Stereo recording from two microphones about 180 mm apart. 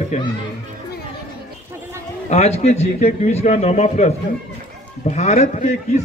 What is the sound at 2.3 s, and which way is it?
A man's voice, 35° left (ahead or behind).